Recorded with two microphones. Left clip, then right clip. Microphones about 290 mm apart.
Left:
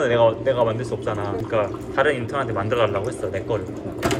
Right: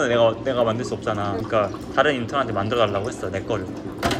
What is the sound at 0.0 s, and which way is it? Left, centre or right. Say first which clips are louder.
Speech: left 1 dB; centre.